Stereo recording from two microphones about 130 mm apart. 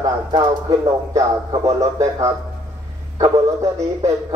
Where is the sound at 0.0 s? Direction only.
25° right (ahead or behind).